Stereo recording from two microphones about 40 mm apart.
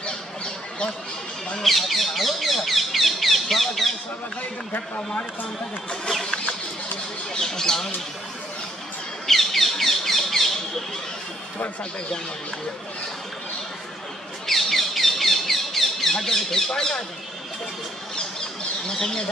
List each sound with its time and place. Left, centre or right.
1.6 s bird: centre
4.4 s speech: left
7.3 s speech: centre
9.3 s bird: centre
14.4 s a sound: centre
18.9 s speech: centre